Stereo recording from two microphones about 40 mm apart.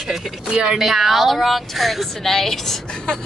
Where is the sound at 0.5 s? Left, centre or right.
Centre.